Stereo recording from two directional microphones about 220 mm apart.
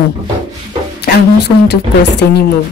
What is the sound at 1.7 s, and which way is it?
Speech, 50° left (ahead or behind).